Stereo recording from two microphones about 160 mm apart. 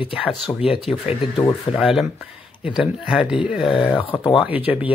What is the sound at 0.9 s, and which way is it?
Speech, 40° left (ahead or behind).